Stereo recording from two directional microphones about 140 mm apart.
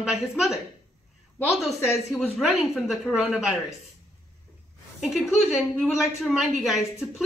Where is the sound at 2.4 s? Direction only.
Centre (ahead or behind).